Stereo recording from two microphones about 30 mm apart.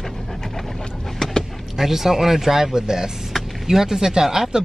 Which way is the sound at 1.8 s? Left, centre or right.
Centre.